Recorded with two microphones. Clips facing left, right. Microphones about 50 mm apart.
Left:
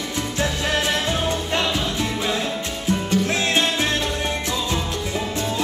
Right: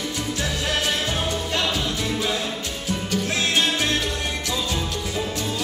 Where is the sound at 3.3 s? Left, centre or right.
Left.